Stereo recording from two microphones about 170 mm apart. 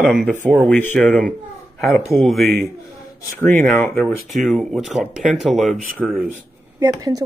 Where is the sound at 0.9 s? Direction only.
5° left (ahead or behind).